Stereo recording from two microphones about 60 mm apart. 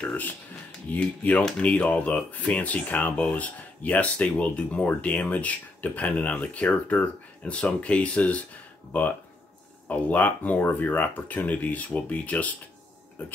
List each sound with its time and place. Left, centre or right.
0.8 s speech: left
9.8 s speech: left